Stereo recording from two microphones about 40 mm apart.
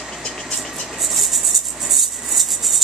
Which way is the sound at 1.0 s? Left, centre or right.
Centre.